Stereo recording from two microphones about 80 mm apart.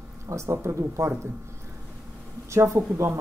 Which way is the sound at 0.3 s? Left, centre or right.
Right.